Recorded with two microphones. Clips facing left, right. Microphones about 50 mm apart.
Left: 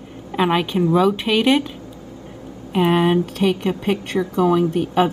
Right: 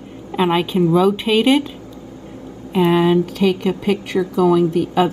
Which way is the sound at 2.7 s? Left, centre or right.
Left.